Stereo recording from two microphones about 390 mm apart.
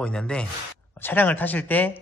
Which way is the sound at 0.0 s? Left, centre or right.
Centre.